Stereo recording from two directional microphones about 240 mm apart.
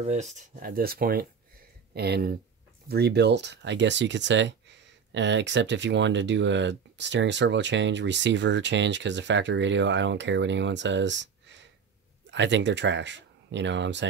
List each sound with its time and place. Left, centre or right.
0.0 s speech: right